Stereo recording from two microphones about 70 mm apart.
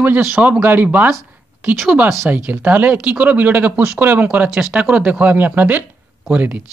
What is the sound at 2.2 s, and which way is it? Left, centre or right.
Speech, right.